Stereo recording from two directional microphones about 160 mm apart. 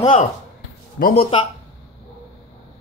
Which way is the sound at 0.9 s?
65° left (ahead or behind).